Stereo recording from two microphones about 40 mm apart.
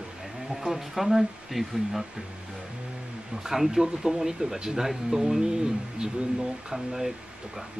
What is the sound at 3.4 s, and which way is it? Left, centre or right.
Speech, centre.